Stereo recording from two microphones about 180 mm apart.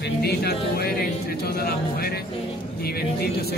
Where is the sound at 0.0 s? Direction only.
60° left (ahead or behind).